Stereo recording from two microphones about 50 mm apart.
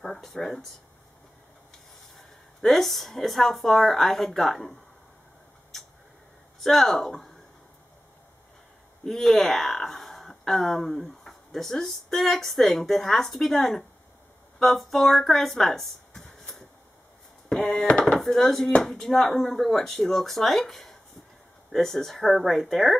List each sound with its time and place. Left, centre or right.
0.0 s speech: centre
2.1 s speech: centre
6.6 s speech: centre
9.0 s speech: centre
16.2 s a sound: centre
17.7 s speech: centre
18.0 s speech: centre